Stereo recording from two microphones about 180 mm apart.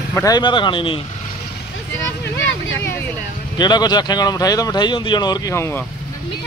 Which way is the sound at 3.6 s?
25° left (ahead or behind).